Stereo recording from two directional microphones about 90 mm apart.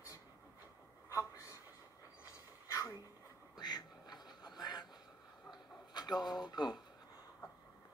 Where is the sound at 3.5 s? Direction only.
50° left (ahead or behind).